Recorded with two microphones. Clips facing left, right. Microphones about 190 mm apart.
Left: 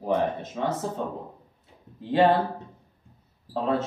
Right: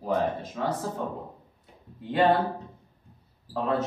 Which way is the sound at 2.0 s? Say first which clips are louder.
Left 3 dB; 25° left (ahead or behind).